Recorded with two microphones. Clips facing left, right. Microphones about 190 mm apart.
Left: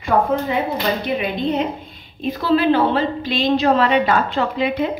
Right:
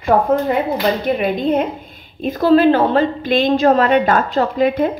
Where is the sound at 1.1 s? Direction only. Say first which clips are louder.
Right 4 dB; 50° right (ahead or behind).